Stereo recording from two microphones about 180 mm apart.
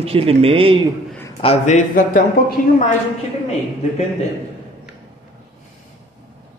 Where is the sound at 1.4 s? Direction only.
35° left (ahead or behind).